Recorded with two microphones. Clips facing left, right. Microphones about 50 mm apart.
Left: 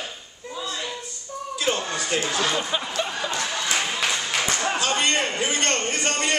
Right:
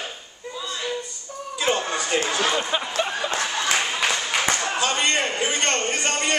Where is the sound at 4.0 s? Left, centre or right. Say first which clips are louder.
Right 2 dB; centre.